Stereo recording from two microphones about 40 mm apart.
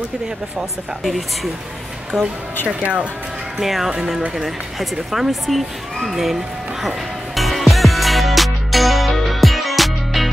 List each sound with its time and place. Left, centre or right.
1.0 s a child's voice: centre
2.1 s a woman's voice: left
3.6 s a child's voice: centre
7.3 s music: centre